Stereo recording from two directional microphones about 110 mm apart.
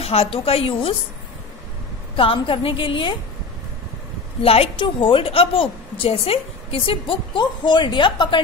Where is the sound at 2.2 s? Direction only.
55° left (ahead or behind).